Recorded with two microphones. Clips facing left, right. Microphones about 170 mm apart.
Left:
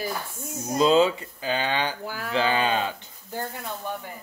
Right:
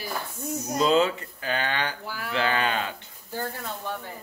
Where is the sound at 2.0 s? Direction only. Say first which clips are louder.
Left 2 dB; 45° left (ahead or behind).